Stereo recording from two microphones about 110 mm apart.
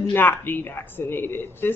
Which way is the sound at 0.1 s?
20° left (ahead or behind).